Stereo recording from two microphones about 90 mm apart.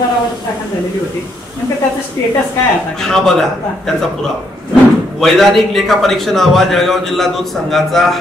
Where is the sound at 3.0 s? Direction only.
5° left (ahead or behind).